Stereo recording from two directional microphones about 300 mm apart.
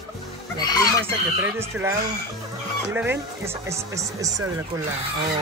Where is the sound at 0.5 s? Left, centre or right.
Centre.